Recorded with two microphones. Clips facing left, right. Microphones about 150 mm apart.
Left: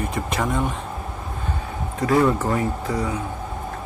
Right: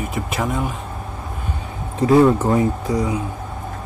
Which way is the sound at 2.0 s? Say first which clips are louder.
Right 5 dB; 25° right (ahead or behind).